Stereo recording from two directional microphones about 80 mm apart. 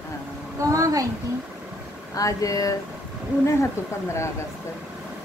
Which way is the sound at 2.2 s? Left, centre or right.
Left.